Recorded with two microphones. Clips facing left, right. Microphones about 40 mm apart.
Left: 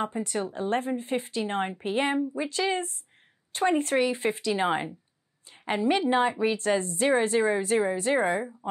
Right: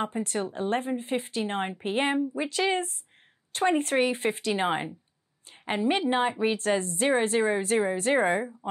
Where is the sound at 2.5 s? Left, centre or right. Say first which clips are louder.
Right 2 dB; right.